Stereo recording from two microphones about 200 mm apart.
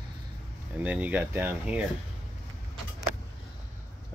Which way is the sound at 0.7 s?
5° right (ahead or behind).